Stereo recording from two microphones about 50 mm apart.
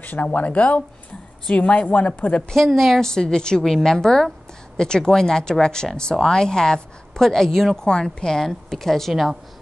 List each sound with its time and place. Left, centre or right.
0.0 s a woman's voice: left
2.5 s speech: centre
3.0 s speech: centre